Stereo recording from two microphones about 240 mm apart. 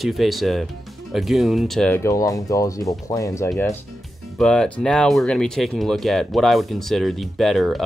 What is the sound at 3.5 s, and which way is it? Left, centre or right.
Speech, centre.